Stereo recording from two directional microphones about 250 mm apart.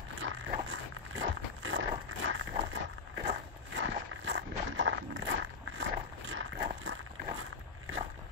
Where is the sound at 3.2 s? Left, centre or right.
Right.